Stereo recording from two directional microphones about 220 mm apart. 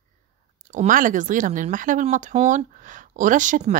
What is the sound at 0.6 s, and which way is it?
Speech, 35° right (ahead or behind).